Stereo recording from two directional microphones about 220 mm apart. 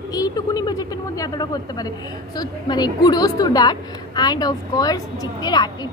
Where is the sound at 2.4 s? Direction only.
20° left (ahead or behind).